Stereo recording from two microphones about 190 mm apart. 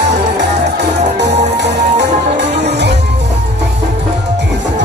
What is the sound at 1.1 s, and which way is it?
Music, 65° right (ahead or behind).